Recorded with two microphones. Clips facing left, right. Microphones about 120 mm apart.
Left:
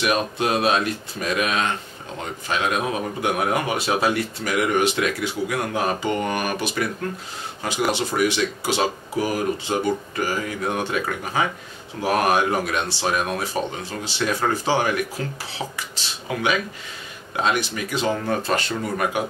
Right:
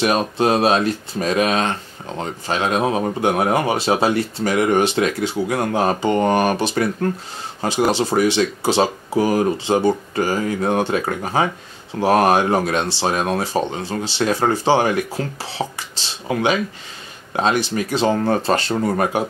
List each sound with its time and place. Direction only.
0.0 s speech: 35° right (ahead or behind)